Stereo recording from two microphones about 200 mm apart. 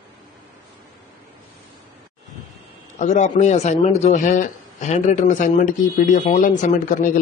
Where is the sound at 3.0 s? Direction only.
35° left (ahead or behind).